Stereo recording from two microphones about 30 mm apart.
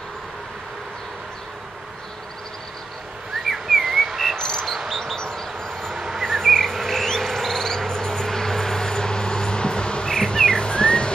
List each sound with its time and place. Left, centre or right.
3.3 s whistling: centre
3.8 s a sound: centre
4.4 s cricket: centre
4.9 s a sound: centre
5.9 s cricket: centre
6.4 s insect: centre; by 10.0 s left
10.0 s insect: left